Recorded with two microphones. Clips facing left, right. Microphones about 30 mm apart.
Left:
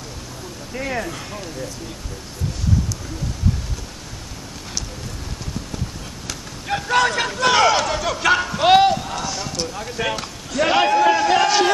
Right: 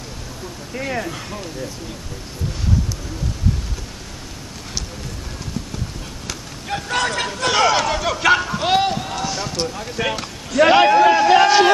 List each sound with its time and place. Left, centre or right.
0.7 s speech: centre
6.2 s a sound: centre
8.5 s run: centre
8.9 s run: centre
10.6 s a man's voice: centre